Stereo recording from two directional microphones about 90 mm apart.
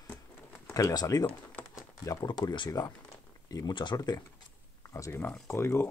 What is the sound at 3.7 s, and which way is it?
Speech, 55° left (ahead or behind).